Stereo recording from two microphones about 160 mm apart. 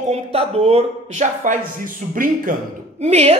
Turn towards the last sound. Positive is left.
turn(degrees=-45)  # may be behind; listen again after turning